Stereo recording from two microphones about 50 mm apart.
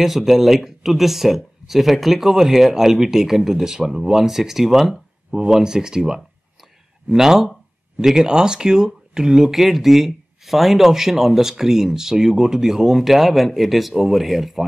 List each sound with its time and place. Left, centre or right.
0.0 s speech: centre